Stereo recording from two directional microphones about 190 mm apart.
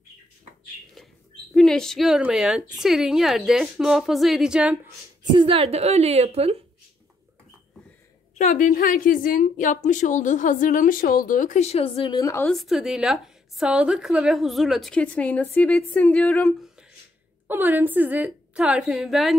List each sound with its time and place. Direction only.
1.5 s a woman's voice: centre (ahead or behind)
5.3 s a woman's voice: 30° right (ahead or behind)
8.4 s a woman's voice: 40° left (ahead or behind); by 12.4 s 15° left (ahead or behind)
12.4 s a woman's voice: centre (ahead or behind)
17.5 s a woman's voice: 10° right (ahead or behind)